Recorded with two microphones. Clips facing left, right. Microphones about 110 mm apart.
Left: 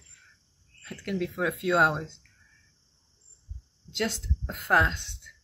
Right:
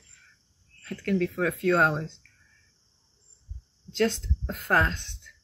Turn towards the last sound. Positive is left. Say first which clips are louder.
# even
turn(degrees=5)  # may be behind; listen again after turning